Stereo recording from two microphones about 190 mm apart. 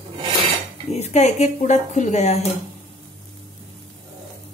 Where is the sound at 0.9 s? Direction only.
35° left (ahead or behind).